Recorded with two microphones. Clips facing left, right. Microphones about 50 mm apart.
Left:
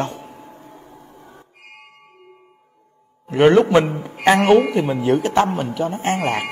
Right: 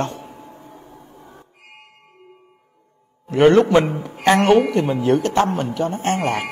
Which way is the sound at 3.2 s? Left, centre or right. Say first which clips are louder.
Even; centre.